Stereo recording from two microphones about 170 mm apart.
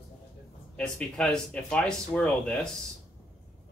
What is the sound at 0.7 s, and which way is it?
Speech, 5° left (ahead or behind).